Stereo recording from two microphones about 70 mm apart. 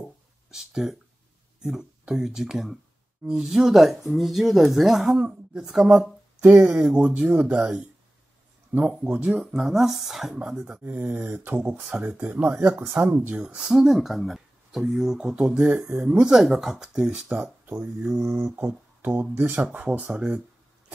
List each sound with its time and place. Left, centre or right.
0.5 s speech: centre
8.9 s speech: centre
9.4 s speech: centre
10.8 s speech: right
12.8 s mantra: right
13.2 s speech: right
13.7 s speech: centre
17.6 s mantra: right
18.6 s speech: right
19.3 s mantra: right
19.6 s speech: right